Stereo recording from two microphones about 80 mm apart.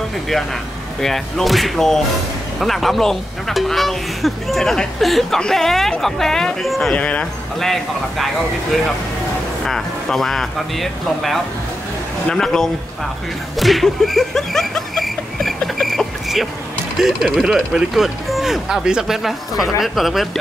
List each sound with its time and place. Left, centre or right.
1.0 s speech: centre
6.9 s speech: centre
7.6 s speech: centre
9.7 s speech: centre
13.6 s a sound: centre
17.0 s speech: centre